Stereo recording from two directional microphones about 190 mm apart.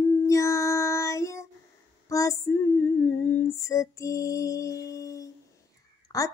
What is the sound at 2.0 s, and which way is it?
Female singing, 15° left (ahead or behind).